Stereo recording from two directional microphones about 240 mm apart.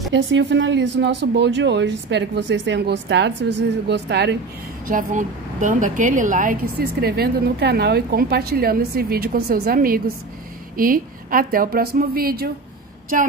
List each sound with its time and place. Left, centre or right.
0.1 s speech: right
4.8 s a woman's voice: right